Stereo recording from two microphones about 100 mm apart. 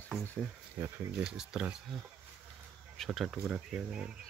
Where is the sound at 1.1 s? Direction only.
10° right (ahead or behind).